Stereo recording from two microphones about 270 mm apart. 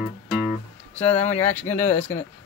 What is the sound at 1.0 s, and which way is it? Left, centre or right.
Speech, left.